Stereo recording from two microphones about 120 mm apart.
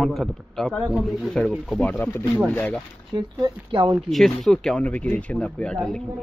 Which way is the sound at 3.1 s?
45° right (ahead or behind).